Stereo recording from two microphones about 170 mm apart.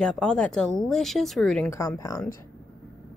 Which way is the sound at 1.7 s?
20° left (ahead or behind).